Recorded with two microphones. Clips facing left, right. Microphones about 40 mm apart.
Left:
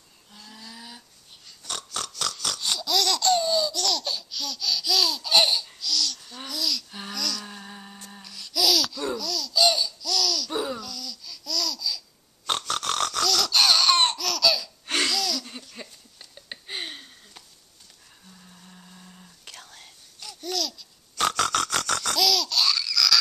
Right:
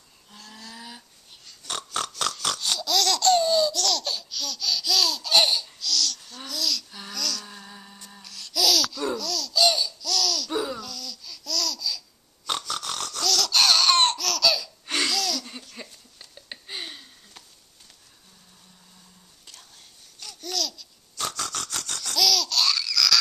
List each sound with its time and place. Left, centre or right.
0.5 s a sound: centre
2.6 s laughter: centre
6.9 s a sound: left
8.2 s laughter: centre
12.4 s snoring: left
12.7 s snoring: left
13.2 s laughter: centre
16.6 s a sound: left
19.4 s whispering: left
20.4 s babbling: centre
21.2 s a sound: left
22.1 s laughter: centre